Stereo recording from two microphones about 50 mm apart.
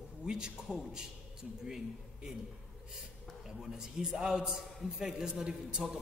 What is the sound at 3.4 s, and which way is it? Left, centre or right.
A man's voice, centre.